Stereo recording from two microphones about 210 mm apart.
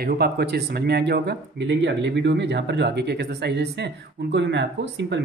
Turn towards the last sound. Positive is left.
turn(degrees=-55)  # may be behind; listen again after turning